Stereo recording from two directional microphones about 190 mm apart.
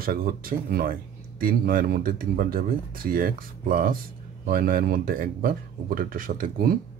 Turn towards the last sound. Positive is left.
turn(degrees=-50)  # may be behind; listen again after turning